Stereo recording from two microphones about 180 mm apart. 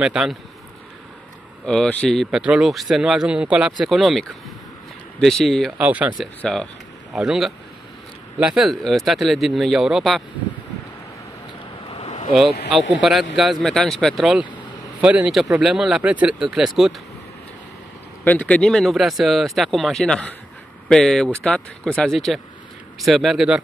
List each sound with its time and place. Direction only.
0.0 s speech: 5° right (ahead or behind)
1.7 s speech: 5° left (ahead or behind)
6.4 s speech: 5° left (ahead or behind)
11.9 s a sound: 35° left (ahead or behind)
13.0 s a man's voice: centre (ahead or behind)
18.2 s speech: 10° left (ahead or behind)